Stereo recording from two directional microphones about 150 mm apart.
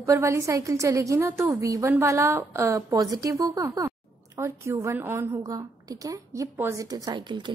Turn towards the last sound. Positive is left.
turn(degrees=-30)  # may be behind; listen again after turning